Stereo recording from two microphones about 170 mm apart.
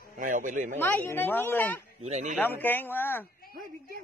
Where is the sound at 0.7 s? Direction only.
15° left (ahead or behind).